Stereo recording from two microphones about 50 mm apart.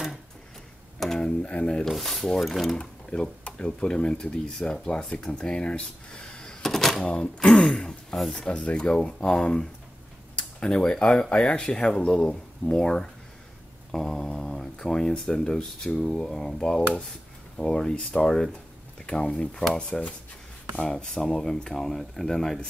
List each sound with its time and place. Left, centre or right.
0.9 s a sound: centre
1.2 s speech: left
1.9 s speech: centre
2.7 s speech: centre